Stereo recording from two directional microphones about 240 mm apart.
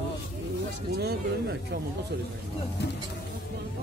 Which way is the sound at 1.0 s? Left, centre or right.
Right.